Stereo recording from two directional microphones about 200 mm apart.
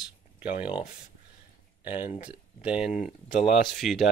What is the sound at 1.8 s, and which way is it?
Speech, 10° right (ahead or behind).